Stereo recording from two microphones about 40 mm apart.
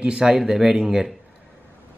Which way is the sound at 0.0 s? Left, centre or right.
Centre.